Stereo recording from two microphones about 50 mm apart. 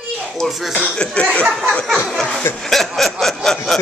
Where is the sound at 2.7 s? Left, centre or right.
Centre.